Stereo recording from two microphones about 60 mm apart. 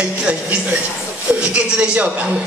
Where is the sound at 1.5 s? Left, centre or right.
Right.